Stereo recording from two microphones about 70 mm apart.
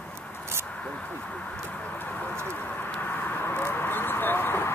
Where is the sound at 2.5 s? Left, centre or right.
Left.